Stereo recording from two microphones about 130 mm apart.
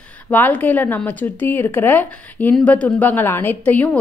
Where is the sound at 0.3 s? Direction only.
15° left (ahead or behind).